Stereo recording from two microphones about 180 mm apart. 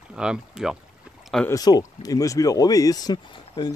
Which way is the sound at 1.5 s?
20° left (ahead or behind).